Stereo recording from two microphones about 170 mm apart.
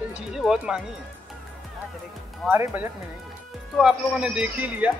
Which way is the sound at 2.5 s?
10° right (ahead or behind).